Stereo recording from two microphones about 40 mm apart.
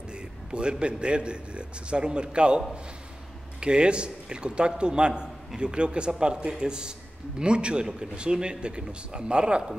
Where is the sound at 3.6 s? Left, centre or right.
Right.